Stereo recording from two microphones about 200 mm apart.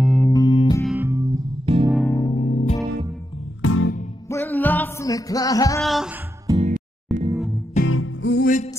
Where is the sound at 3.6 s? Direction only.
90° left.